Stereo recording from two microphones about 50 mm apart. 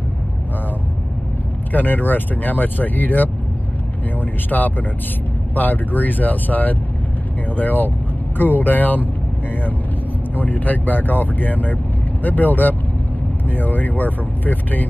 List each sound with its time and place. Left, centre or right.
1.7 s speech: left
10.3 s speech: left